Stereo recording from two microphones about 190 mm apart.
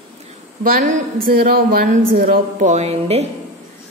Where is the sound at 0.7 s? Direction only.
50° right (ahead or behind).